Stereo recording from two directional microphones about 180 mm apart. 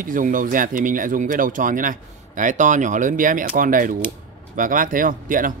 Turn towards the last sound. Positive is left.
turn(degrees=-50)  # may be behind; listen again after turning